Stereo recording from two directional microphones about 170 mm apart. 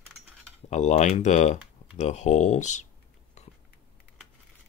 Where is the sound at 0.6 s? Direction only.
45° left (ahead or behind).